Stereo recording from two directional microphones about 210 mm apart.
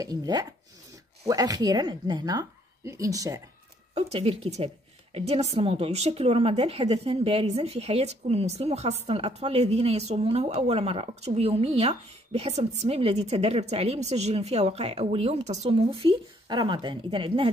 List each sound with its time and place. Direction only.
0.0 s a woman's voice: 20° right (ahead or behind)
3.9 s a woman's voice: 30° right (ahead or behind)